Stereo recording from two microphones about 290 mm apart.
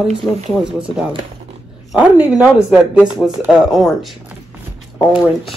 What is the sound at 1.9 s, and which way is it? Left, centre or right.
Speech, centre.